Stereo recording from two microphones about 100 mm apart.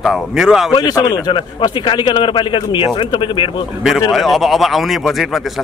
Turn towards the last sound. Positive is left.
turn(degrees=0)  # may be behind; listen again after turning